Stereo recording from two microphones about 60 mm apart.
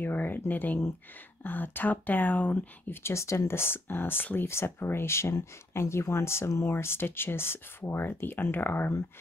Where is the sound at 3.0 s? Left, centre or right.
Left.